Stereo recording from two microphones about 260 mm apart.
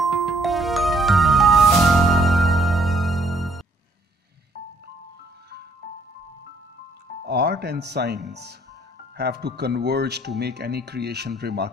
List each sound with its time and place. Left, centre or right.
0.0 s music: centre
7.2 s music: right
8.3 s speech: right